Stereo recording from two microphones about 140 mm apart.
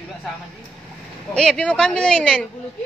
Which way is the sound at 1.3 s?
5° left (ahead or behind).